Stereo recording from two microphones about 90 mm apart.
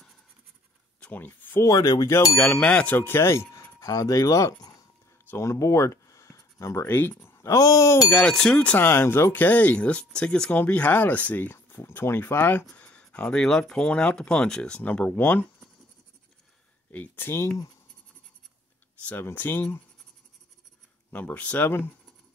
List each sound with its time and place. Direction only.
1.0 s speech: 20° left (ahead or behind)
1.6 s speech: 45° left (ahead or behind)
2.1 s speech: 25° left (ahead or behind)
3.0 s speech: 25° left (ahead or behind)
5.3 s a sound: 30° left (ahead or behind)
6.9 s speech: 25° left (ahead or behind)
8.1 s speech: 10° left (ahead or behind)
8.7 s speech: 25° left (ahead or behind)
16.9 s speech: 20° left (ahead or behind)
19.0 s speech: 20° left (ahead or behind)
21.1 s speech: 20° left (ahead or behind)